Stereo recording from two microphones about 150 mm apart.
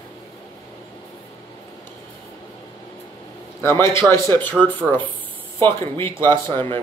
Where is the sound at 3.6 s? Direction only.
15° left (ahead or behind).